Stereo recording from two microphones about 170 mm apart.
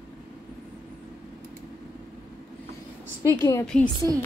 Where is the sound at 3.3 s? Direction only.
20° left (ahead or behind).